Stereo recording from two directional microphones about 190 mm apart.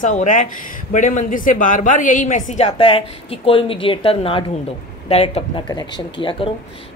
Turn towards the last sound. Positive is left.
turn(degrees=25)  # may be behind; listen again after turning